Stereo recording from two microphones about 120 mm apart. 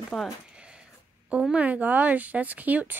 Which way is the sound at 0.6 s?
5° right (ahead or behind).